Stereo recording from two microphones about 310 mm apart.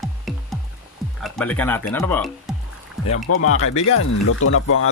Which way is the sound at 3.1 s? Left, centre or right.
Left.